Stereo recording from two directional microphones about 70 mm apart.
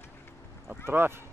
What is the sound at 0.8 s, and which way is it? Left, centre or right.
Speech, right.